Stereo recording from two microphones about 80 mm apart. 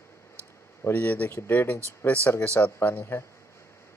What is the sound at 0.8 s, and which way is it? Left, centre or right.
Speech, left.